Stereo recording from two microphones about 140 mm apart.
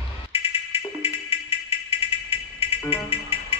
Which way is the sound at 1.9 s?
45° left (ahead or behind).